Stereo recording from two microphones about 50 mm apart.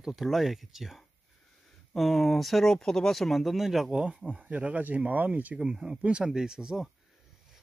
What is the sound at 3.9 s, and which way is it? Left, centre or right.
Speech, centre.